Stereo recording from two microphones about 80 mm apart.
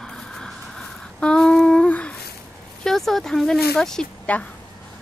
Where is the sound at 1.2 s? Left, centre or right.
Centre.